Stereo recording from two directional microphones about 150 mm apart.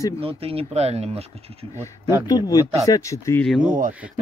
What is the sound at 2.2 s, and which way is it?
Speech, 25° left (ahead or behind).